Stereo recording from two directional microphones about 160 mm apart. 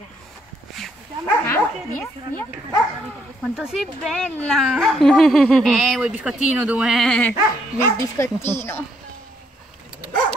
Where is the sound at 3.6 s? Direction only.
Centre (ahead or behind).